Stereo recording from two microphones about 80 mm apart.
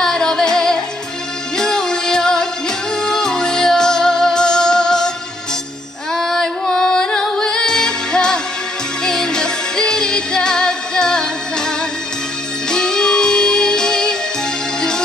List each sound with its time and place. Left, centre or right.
0.0 s music: centre
6.1 s music: centre